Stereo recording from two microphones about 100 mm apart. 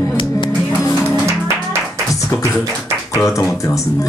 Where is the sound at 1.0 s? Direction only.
25° right (ahead or behind).